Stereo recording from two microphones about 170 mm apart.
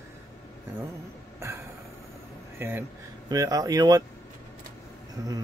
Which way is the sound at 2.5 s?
10° right (ahead or behind).